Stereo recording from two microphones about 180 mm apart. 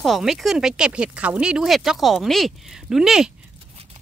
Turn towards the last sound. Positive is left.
turn(degrees=0)  # may be behind; listen again after turning